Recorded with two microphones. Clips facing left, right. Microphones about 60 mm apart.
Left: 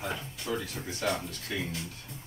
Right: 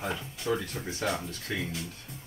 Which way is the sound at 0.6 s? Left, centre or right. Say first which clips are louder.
Right 1 dB; right.